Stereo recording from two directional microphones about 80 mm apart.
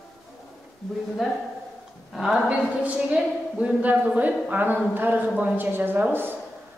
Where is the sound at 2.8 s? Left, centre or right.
Centre.